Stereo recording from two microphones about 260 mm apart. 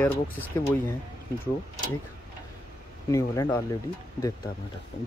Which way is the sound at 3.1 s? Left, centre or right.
Centre.